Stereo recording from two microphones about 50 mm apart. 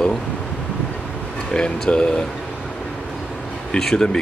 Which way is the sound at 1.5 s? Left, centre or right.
Centre.